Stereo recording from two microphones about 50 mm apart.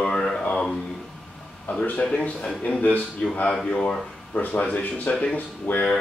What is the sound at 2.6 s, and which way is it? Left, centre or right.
Speech, left.